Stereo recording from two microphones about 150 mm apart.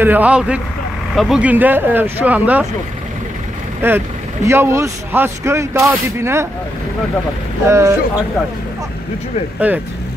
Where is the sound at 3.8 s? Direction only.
15° right (ahead or behind).